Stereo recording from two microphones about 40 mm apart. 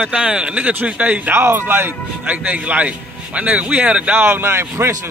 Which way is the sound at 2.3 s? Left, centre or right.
Right.